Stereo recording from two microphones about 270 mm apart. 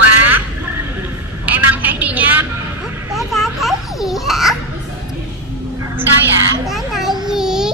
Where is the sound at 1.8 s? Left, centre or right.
Centre.